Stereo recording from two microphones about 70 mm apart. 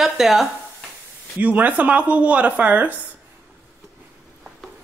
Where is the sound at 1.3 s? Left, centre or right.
Right.